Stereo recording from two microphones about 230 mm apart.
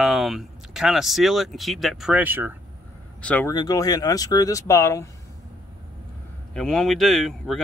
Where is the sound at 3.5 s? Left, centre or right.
Centre.